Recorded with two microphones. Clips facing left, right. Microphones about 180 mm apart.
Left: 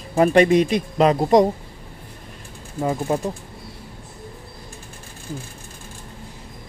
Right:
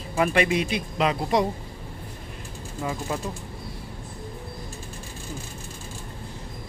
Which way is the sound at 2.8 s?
35° left (ahead or behind).